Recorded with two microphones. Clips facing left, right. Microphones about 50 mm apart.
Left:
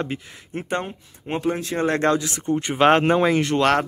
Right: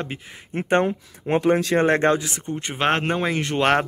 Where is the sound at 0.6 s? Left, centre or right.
Right.